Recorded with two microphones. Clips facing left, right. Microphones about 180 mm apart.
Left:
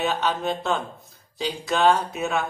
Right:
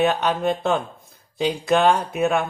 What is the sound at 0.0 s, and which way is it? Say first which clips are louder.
Speech: right 5 dB; 55° right (ahead or behind).